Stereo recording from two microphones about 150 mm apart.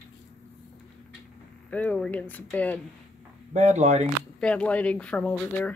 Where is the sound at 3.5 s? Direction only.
50° right (ahead or behind).